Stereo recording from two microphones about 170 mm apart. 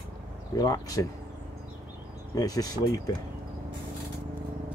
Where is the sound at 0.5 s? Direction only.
20° left (ahead or behind).